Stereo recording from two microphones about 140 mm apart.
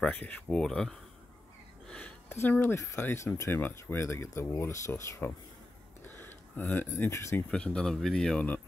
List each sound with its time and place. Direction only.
0.0 s speech: 10° left (ahead or behind)
1.9 s a sound: 10° left (ahead or behind)
2.4 s speech: 15° left (ahead or behind)
7.5 s speech: 5° left (ahead or behind)